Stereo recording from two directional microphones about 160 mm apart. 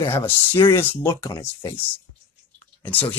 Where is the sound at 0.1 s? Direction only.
15° left (ahead or behind).